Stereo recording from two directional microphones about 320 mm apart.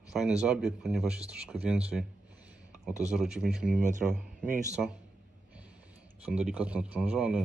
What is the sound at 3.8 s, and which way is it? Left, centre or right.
Speech, right.